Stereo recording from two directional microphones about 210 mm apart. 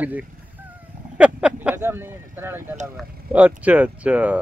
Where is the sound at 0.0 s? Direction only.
5° right (ahead or behind).